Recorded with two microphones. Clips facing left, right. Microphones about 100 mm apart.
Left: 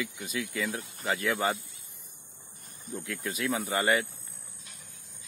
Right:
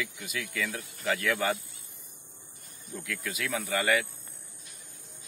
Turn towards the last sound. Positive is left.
turn(degrees=30)  # may be behind; listen again after turning